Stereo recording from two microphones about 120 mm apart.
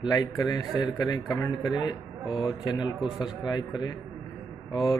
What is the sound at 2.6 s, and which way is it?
Speech, 30° left (ahead or behind).